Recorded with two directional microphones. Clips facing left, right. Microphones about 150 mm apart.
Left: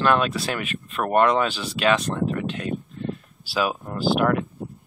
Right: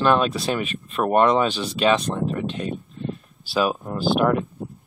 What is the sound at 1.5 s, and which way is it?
Speech, centre (ahead or behind).